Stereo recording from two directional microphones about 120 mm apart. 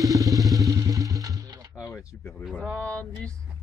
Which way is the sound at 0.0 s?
30° right (ahead or behind).